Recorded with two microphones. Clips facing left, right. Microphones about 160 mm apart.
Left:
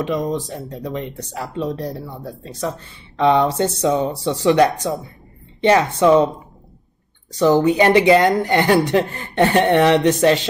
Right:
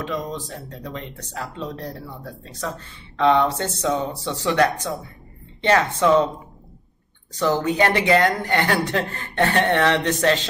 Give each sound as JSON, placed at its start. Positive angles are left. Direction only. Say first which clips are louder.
{"t": 0.0, "sound": "speech", "louder": "left 7 dB", "side_deg": 15}
{"t": 7.3, "sound": "speech", "louder": "left 6 dB", "side_deg": 20}